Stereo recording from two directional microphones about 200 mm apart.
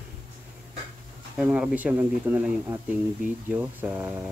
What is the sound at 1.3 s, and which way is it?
Speech, 5° right (ahead or behind).